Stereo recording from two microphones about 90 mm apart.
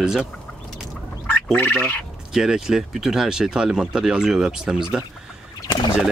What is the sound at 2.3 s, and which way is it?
Speech, 5° right (ahead or behind).